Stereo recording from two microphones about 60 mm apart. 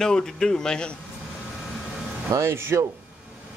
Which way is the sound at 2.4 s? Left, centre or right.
Right.